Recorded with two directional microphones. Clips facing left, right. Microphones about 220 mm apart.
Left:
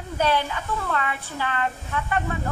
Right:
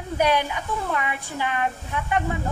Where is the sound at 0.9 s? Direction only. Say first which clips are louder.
Even; 15° right (ahead or behind).